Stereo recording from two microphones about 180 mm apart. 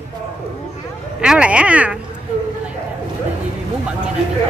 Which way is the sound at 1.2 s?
5° right (ahead or behind).